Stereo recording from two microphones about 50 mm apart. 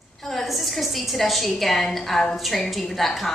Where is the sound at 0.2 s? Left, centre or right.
Centre.